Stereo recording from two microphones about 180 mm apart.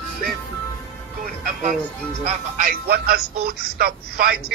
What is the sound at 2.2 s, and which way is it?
Speech, 45° right (ahead or behind).